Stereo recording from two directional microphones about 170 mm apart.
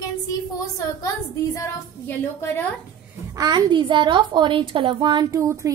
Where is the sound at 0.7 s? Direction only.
20° left (ahead or behind).